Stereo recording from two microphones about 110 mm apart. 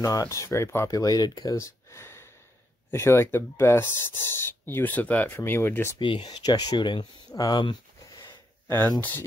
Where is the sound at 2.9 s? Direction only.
25° left (ahead or behind).